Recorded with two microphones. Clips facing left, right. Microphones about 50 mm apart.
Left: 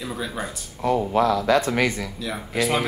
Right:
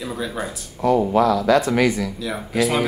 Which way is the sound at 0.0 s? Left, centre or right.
Centre.